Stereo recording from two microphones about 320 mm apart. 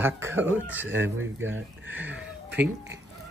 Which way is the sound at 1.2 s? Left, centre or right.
Right.